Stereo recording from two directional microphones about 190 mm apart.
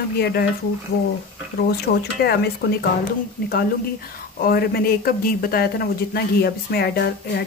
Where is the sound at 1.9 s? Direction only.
60° left (ahead or behind).